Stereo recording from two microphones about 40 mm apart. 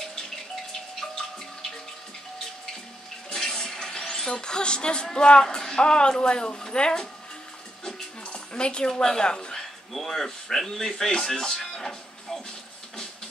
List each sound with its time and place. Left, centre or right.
0.0 s music: centre
3.3 s a sound: centre
5.1 s speech: left
8.3 s speech: left; by 12.4 s centre